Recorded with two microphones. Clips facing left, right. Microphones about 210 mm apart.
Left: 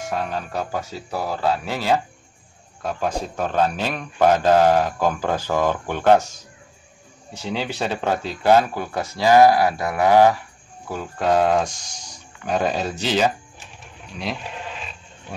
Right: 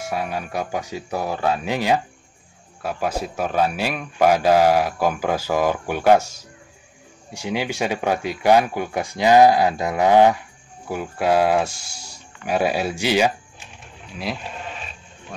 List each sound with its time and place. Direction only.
0.0 s speech: 10° right (ahead or behind)